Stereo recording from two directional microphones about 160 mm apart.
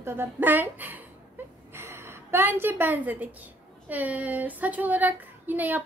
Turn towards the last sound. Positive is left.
turn(degrees=-10)  # may be behind; listen again after turning